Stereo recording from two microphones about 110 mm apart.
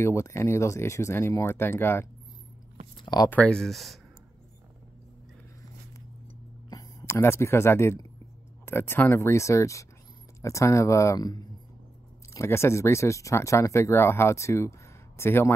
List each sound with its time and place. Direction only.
0.0 s speech: 25° left (ahead or behind)
3.3 s speech: 10° left (ahead or behind)
6.7 s a sound: 35° left (ahead or behind)
7.1 s speech: 25° left (ahead or behind)
12.4 s speech: 25° left (ahead or behind)